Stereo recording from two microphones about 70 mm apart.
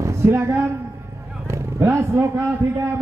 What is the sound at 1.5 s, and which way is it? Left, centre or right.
Vehicle, right.